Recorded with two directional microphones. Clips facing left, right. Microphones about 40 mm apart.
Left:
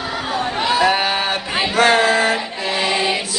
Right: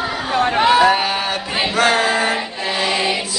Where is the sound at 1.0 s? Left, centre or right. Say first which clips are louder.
Left 1 dB; left.